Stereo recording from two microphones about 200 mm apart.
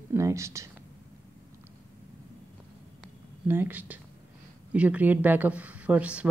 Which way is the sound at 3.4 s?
10° right (ahead or behind).